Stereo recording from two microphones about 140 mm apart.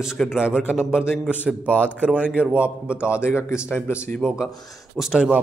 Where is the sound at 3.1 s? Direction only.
20° left (ahead or behind).